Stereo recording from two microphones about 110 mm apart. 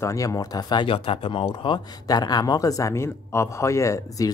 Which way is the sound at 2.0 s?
35° left (ahead or behind).